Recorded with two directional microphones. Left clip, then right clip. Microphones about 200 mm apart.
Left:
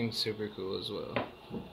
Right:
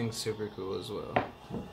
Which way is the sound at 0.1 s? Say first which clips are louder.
Left 1 dB; 20° left (ahead or behind).